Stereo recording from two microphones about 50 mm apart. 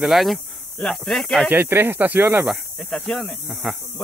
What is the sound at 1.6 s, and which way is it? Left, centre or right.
Speech, right.